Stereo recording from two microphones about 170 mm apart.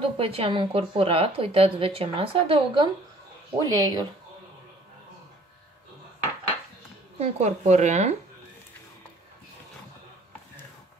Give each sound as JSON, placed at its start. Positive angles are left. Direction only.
{"t": 0.0, "sound": "a woman's voice", "side_deg": -35}
{"t": 7.2, "sound": "a woman's voice", "side_deg": -40}